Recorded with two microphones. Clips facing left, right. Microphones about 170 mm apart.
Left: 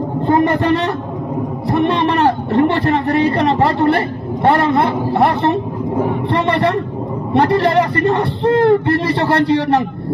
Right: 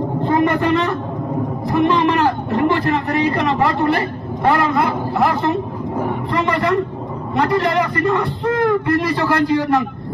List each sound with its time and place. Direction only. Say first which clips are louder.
0.3 s a man's voice: left 3 dB; 35° left (ahead or behind)
6.3 s a man's voice: left 1 dB; 35° left (ahead or behind)